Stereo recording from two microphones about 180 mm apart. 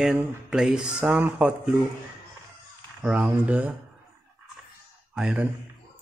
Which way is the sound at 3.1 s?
5° right (ahead or behind).